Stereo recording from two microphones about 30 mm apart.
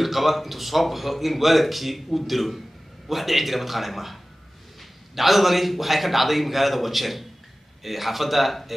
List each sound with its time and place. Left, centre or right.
0.0 s a man's voice: centre